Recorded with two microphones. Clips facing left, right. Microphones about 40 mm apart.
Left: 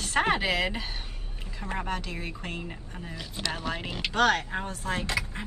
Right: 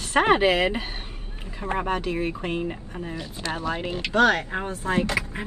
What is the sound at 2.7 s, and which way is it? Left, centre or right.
Speech, centre.